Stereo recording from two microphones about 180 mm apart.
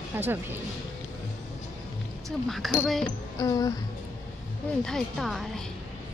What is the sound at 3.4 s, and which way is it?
Music, 20° left (ahead or behind).